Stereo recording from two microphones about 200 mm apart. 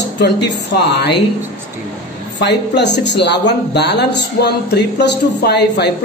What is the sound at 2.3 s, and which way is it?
Speech, 60° left (ahead or behind).